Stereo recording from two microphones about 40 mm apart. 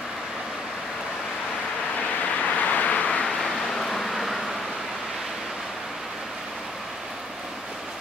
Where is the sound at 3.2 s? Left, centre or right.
Centre.